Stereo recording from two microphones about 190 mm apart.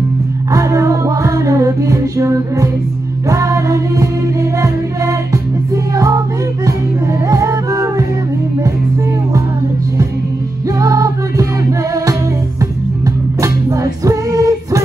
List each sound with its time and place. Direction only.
0.5 s music: 15° right (ahead or behind)
10.8 s music: 15° right (ahead or behind)